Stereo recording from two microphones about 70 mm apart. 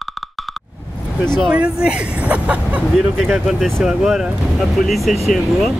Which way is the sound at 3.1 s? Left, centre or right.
Centre.